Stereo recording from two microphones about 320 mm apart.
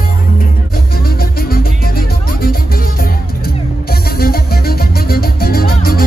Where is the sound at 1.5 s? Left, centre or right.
Left.